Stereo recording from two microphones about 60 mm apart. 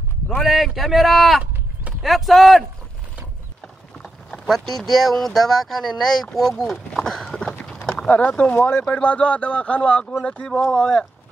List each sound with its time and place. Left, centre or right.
0.4 s a man's voice: centre
4.0 s speech: centre
7.5 s clip-clop: centre
7.9 s speech: left